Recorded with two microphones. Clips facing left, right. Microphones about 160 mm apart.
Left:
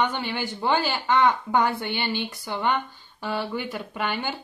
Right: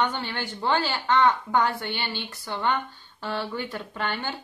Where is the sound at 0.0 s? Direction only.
10° left (ahead or behind).